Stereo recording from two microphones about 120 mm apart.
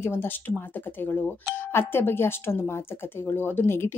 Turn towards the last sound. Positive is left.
turn(degrees=20)  # may be behind; listen again after turning